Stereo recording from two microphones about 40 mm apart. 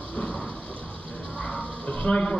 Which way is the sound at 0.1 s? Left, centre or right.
Left.